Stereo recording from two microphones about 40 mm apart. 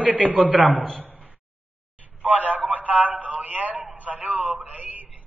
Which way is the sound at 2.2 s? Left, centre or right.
Right.